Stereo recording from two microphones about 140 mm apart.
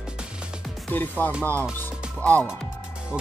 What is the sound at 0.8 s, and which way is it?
Speech, 10° left (ahead or behind).